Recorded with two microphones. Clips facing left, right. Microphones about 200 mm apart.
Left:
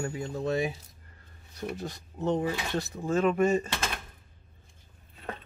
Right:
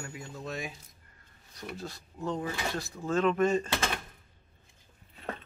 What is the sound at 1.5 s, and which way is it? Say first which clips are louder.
Speech: left 5 dB; 20° left (ahead or behind).